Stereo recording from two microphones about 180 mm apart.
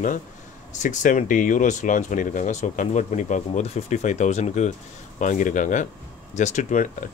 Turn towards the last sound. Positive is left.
turn(degrees=40)  # may be behind; listen again after turning